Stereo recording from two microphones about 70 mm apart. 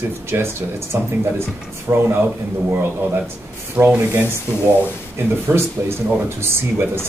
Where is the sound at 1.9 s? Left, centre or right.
Right.